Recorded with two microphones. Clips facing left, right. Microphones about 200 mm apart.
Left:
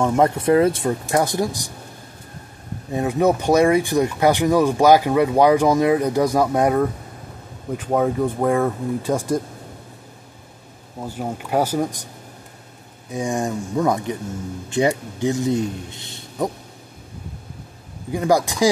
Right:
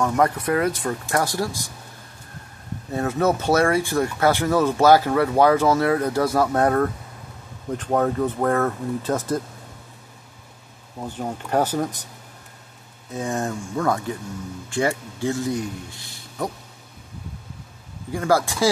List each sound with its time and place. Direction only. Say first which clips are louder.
0.0 s speech: left 3 dB; 25° left (ahead or behind)
2.9 s speech: left 3 dB; 15° left (ahead or behind)
11.0 s speech: left 2 dB; 10° left (ahead or behind)
13.1 s speech: left 3 dB; 15° left (ahead or behind)
18.1 s speech: left 2 dB; 15° left (ahead or behind)